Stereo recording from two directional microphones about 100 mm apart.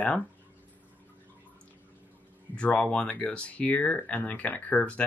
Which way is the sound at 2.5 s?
15° left (ahead or behind).